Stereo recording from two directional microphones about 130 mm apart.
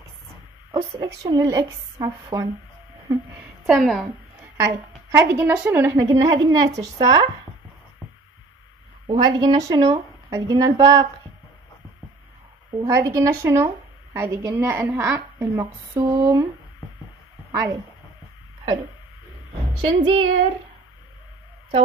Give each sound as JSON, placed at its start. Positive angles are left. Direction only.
{"t": 0.7, "sound": "a woman's voice", "side_deg": -20}
{"t": 3.6, "sound": "a woman's voice", "side_deg": 0}
{"t": 4.6, "sound": "a woman's voice", "side_deg": -20}
{"t": 9.0, "sound": "a woman's voice", "side_deg": -40}
{"t": 12.7, "sound": "a woman's voice", "side_deg": -25}
{"t": 19.7, "sound": "a woman's voice", "side_deg": -40}